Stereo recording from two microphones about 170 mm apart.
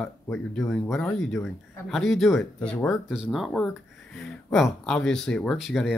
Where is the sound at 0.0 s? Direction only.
5° left (ahead or behind).